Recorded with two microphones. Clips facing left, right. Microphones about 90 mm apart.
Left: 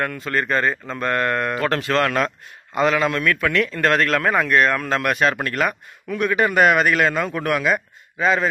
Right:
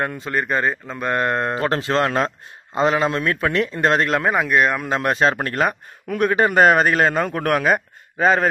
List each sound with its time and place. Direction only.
0.0 s speech: 25° right (ahead or behind)
0.4 s speech: 10° right (ahead or behind)
1.1 s speech: 25° right (ahead or behind)
4.4 s speech: 10° right (ahead or behind)
5.0 s speech: 30° right (ahead or behind)
6.0 s a man's voice: 45° right (ahead or behind)
7.2 s speech: 45° right (ahead or behind)